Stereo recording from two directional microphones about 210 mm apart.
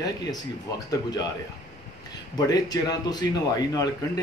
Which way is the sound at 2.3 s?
20° left (ahead or behind).